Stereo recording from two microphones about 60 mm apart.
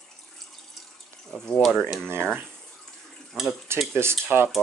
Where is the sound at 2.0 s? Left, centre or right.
Right.